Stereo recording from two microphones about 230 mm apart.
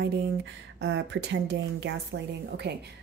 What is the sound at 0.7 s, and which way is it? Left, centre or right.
A woman's voice, right.